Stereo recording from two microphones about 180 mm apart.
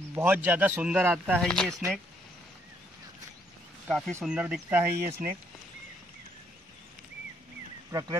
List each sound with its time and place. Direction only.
0.1 s speech: 10° right (ahead or behind)
3.9 s speech: 5° left (ahead or behind); by 5.2 s 15° right (ahead or behind)
7.9 s speech: 20° right (ahead or behind)